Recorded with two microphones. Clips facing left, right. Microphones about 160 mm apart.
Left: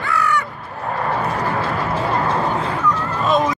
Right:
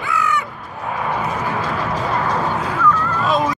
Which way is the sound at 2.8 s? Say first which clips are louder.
Right 2 dB; 15° left (ahead or behind).